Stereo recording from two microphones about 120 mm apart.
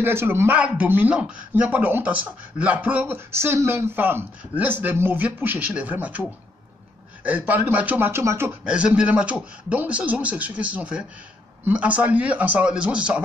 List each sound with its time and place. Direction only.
0.0 s a man's voice: 20° right (ahead or behind)
7.2 s a man's voice: 15° right (ahead or behind)
8.6 s a man's voice: 5° right (ahead or behind)